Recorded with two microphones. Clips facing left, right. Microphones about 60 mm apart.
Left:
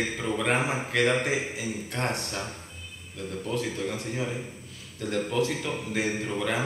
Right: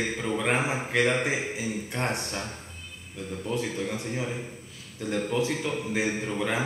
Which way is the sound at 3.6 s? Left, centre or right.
Centre.